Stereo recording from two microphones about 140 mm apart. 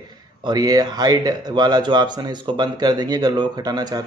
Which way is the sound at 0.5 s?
30° right (ahead or behind).